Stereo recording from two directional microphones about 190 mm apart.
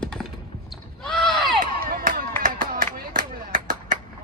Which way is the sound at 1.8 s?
55° right (ahead or behind).